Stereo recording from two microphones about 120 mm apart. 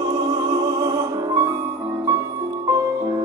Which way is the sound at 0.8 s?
30° right (ahead or behind).